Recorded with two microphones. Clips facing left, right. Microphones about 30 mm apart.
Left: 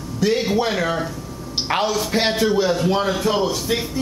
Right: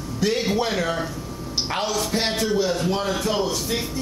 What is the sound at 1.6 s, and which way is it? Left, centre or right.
A woman's voice, centre.